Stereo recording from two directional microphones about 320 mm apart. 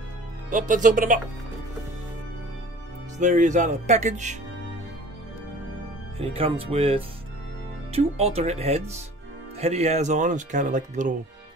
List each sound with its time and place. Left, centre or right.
0.5 s speech: right
3.2 s speech: right
6.1 s speech: centre